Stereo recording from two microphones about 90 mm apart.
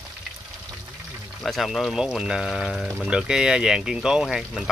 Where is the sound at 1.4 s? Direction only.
Centre (ahead or behind).